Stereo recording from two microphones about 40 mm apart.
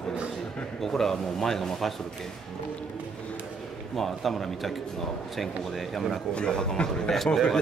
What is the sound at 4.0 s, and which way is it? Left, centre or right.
A man's voice, centre.